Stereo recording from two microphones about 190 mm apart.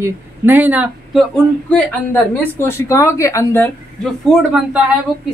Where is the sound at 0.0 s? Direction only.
10° right (ahead or behind).